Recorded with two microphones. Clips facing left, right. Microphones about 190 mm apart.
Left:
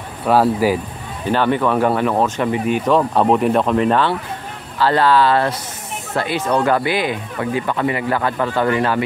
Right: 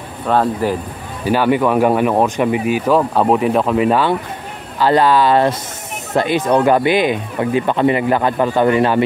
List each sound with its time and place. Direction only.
0.3 s speech: 5° left (ahead or behind)
1.2 s speech: 10° right (ahead or behind)